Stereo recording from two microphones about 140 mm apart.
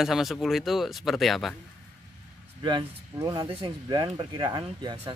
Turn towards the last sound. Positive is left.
turn(degrees=-30)  # may be behind; listen again after turning